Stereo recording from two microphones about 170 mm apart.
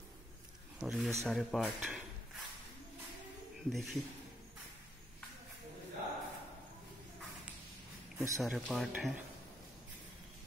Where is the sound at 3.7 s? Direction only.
Centre (ahead or behind).